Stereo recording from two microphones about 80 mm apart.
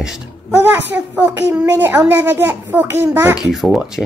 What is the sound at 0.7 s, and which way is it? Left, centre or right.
Speech, right.